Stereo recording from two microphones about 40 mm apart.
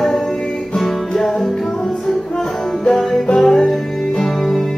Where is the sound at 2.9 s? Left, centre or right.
Centre.